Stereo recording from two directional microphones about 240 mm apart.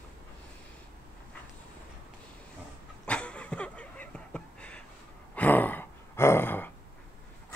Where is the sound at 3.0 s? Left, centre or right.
Centre.